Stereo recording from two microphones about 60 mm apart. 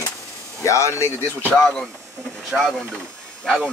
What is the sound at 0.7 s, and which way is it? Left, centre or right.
Speech, left.